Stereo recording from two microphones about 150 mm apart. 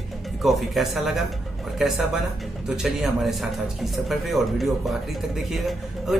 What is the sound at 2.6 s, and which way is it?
Speech, 5° right (ahead or behind).